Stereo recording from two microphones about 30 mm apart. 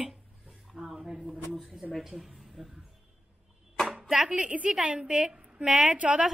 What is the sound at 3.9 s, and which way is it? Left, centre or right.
Music, centre.